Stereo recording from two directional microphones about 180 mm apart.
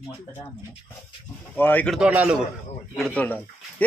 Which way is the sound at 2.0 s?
5° right (ahead or behind).